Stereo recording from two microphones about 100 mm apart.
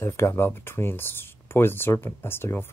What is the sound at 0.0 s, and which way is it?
Speech, 25° left (ahead or behind).